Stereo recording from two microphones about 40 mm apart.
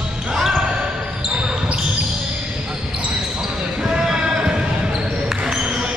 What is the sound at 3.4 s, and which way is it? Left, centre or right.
Basketball bounce, centre.